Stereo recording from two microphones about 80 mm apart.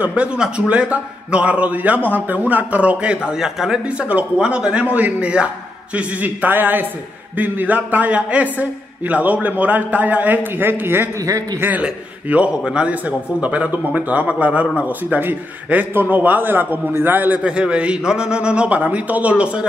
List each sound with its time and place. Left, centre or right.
0.0 s a man's voice: centre
11.1 s a man's voice: right
11.6 s a man's voice: centre